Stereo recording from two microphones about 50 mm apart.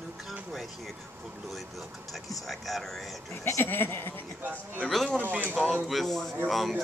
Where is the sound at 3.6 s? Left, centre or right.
Left.